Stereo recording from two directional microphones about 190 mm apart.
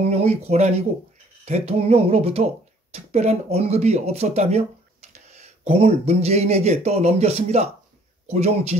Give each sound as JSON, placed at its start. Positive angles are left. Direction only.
{"t": 0.1, "sound": "speech", "side_deg": -35}